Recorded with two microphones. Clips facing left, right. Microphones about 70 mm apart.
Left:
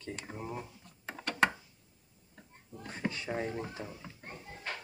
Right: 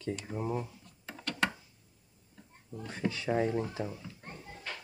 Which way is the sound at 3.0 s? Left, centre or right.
Left.